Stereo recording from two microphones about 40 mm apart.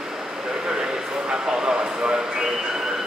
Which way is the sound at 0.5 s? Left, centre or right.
Centre.